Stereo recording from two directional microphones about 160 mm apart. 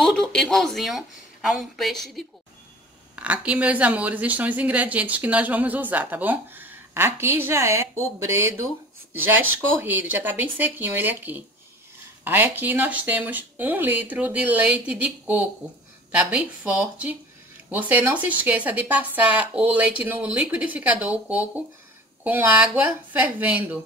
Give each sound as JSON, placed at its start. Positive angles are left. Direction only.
{"t": 0.0, "sound": "a woman's voice", "side_deg": 5}
{"t": 9.8, "sound": "speech", "side_deg": -15}